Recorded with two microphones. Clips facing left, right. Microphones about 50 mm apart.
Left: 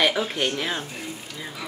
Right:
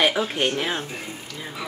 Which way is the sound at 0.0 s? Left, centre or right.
Centre.